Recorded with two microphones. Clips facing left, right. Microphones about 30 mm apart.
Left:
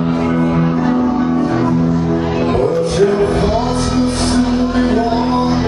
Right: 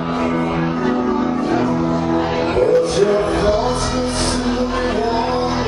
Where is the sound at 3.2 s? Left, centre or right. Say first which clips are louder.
Left 2 dB; centre.